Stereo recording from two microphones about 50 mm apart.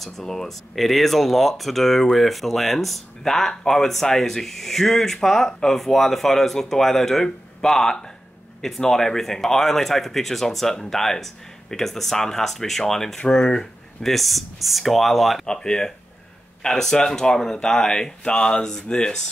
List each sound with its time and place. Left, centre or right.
0.0 s speech: centre
14.0 s speech: centre
15.4 s speech: centre